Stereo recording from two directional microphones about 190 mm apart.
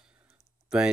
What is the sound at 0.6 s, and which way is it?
Typing, 5° right (ahead or behind).